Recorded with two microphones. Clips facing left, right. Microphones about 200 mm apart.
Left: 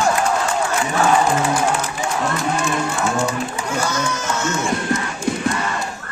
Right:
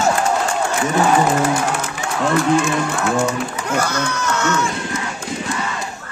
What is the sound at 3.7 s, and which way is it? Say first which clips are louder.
Speech: right 2 dB; 65° right (ahead or behind).